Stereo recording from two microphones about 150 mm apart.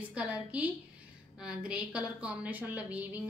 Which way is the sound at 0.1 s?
5° right (ahead or behind).